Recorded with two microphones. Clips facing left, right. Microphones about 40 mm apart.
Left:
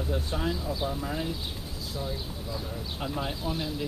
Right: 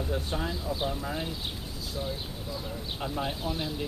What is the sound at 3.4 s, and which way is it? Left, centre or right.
Speech, right.